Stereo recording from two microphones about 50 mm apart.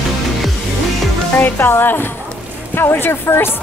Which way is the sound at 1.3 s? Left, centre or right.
Left.